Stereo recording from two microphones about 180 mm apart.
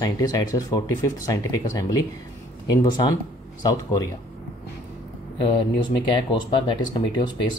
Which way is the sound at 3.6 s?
20° left (ahead or behind).